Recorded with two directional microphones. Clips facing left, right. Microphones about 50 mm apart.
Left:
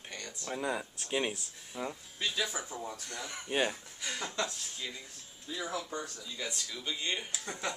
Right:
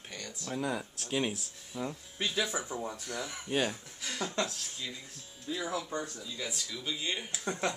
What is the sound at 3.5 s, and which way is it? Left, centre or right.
Speech, centre.